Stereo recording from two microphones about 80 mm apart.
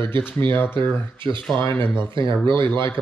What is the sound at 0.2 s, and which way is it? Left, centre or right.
Speech, left.